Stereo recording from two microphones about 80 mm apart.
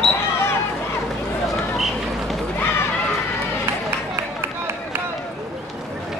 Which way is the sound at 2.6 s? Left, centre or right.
Left.